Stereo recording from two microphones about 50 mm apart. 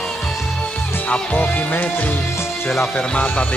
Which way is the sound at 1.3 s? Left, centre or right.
Left.